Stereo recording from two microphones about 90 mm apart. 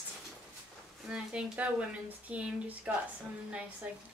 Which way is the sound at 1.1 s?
10° right (ahead or behind).